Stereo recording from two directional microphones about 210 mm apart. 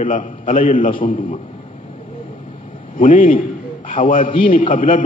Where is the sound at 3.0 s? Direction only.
40° left (ahead or behind).